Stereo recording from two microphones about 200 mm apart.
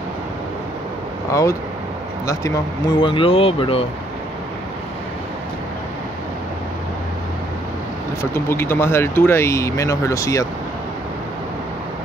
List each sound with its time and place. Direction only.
1.3 s speech: 15° left (ahead or behind)
8.2 s speech: 10° left (ahead or behind)